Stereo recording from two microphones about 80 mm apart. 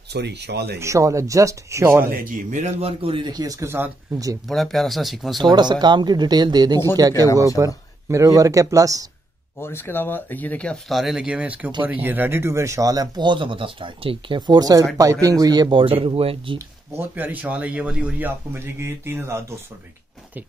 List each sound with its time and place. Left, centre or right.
0.7 s speech: right
3.1 s speech: right
3.3 s speech: right
3.6 s speech: right
4.1 s speech: right
4.5 s speech: centre
5.4 s speech: right
9.6 s speech: left
10.9 s speech: centre; by 15.7 s right
15.7 s speech: right
16.5 s speech: right